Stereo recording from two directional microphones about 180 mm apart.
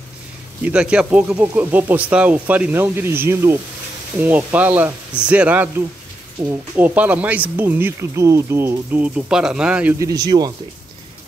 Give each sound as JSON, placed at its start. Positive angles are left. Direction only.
{"t": 0.7, "sound": "speech", "side_deg": -5}
{"t": 6.8, "sound": "speech", "side_deg": -10}
{"t": 9.9, "sound": "speech", "side_deg": -20}